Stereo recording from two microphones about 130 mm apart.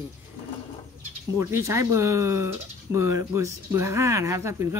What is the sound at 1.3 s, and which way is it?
Speech, 20° right (ahead or behind).